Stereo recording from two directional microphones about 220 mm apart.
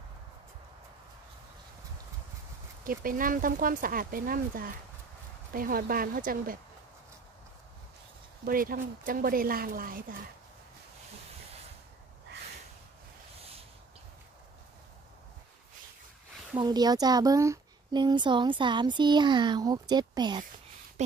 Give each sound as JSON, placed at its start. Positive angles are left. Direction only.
{"t": 2.8, "sound": "speech", "side_deg": -40}
{"t": 8.5, "sound": "speech", "side_deg": -40}
{"t": 16.5, "sound": "speech", "side_deg": -20}